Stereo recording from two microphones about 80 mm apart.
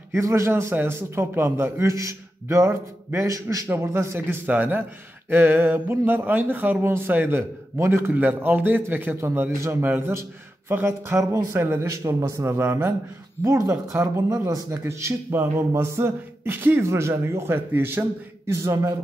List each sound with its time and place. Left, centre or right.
0.1 s speech: right
3.3 s a man's voice: right
3.6 s speech: right
11.9 s speech: right
18.5 s speech: right